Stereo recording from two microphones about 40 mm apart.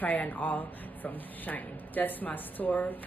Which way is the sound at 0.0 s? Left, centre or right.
Left.